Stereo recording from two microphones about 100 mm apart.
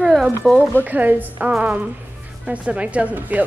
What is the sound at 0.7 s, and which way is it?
Speech, 15° right (ahead or behind).